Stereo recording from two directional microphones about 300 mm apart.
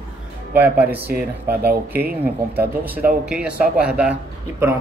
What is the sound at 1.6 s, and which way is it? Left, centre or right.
Speech, right.